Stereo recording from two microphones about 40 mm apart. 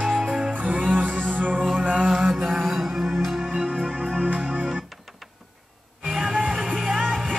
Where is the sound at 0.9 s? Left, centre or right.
Right.